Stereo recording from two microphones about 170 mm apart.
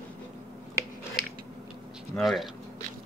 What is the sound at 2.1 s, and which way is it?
Speech, centre (ahead or behind).